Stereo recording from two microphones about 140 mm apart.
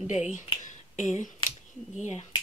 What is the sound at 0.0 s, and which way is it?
Speech, 60° left (ahead or behind).